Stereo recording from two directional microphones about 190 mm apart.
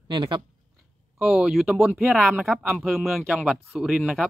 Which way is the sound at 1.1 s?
Centre (ahead or behind).